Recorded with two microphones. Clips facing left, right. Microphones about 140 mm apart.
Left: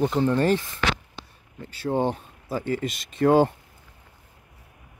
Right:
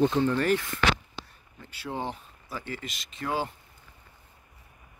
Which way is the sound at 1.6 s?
40° left (ahead or behind).